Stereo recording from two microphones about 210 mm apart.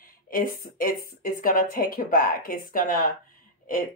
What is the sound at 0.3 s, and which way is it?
A woman's voice, 40° left (ahead or behind).